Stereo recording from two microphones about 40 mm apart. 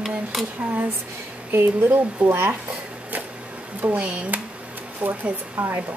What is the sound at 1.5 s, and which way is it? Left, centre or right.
Speech, right.